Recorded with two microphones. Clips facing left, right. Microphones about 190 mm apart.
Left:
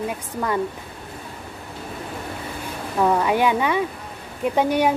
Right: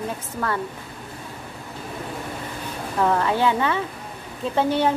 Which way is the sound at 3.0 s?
10° left (ahead or behind).